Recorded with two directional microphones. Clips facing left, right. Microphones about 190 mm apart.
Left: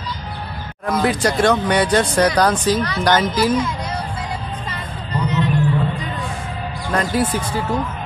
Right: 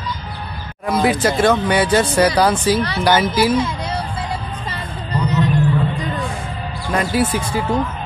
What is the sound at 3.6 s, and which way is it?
Speech, 30° right (ahead or behind).